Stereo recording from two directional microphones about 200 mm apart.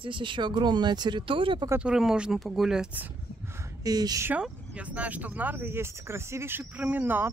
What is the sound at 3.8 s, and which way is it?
Speech, 20° right (ahead or behind).